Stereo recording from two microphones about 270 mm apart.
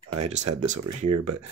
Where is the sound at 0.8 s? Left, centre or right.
Right.